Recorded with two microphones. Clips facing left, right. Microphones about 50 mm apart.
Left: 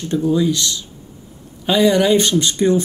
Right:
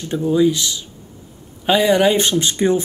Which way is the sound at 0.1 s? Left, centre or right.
Centre.